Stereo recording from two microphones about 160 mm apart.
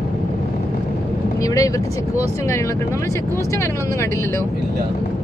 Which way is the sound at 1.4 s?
20° left (ahead or behind).